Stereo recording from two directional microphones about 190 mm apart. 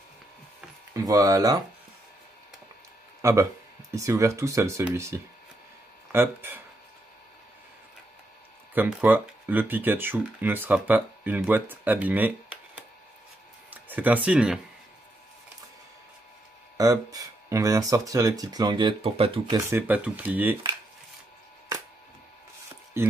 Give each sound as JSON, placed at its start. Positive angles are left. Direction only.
{"t": 0.9, "sound": "speech", "side_deg": -15}
{"t": 3.2, "sound": "speech", "side_deg": -15}
{"t": 8.7, "sound": "speech", "side_deg": -10}
{"t": 16.7, "sound": "speech", "side_deg": -20}
{"t": 19.5, "sound": "speech", "side_deg": -10}